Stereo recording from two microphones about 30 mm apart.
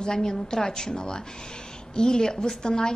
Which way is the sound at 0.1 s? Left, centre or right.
Left.